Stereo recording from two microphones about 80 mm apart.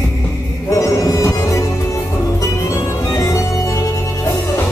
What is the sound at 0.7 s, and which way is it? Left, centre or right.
Music, left.